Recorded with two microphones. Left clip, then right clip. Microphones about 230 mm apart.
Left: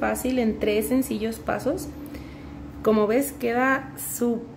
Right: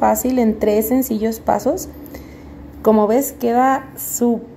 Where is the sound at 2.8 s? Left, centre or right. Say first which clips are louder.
Right 7 dB; centre.